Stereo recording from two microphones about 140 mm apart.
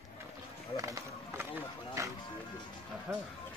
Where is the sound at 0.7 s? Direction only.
25° right (ahead or behind).